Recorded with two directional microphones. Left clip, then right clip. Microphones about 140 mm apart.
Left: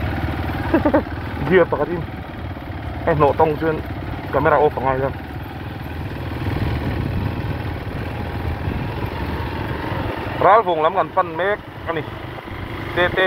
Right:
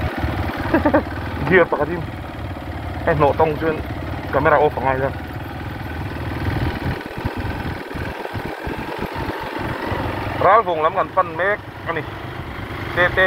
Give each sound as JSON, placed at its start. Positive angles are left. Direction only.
{"t": 0.7, "sound": "speech", "side_deg": 5}
{"t": 3.1, "sound": "speech", "side_deg": 20}
{"t": 10.4, "sound": "speech", "side_deg": 40}